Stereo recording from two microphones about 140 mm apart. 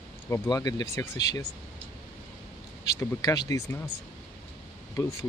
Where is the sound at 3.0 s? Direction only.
25° left (ahead or behind).